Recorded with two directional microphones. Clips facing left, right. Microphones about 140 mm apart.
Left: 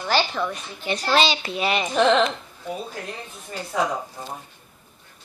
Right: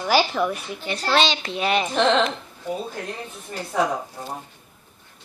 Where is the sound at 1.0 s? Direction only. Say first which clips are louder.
Even; 5° left (ahead or behind).